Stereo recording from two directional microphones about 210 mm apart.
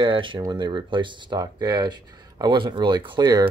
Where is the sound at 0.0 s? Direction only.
25° right (ahead or behind).